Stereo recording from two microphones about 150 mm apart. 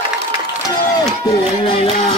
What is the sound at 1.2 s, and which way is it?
Speech, 35° left (ahead or behind).